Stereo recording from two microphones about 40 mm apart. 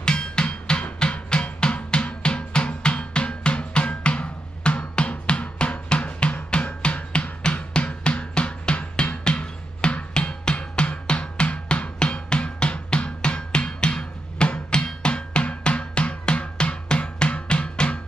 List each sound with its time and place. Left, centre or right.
0.0 s a sound: left
0.9 s drum: left
6.5 s music: left